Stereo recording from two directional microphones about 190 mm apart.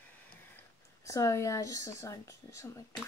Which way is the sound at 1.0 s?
15° left (ahead or behind).